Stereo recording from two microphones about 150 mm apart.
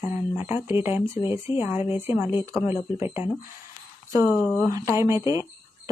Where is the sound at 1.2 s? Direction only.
15° right (ahead or behind).